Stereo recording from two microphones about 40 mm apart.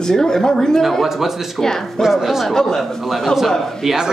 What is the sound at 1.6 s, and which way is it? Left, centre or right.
Speech, centre.